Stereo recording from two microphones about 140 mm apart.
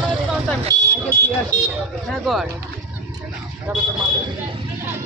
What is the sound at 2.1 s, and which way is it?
Speech, centre (ahead or behind).